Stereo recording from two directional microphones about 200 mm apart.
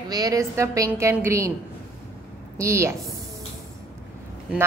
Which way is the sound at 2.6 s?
15° right (ahead or behind).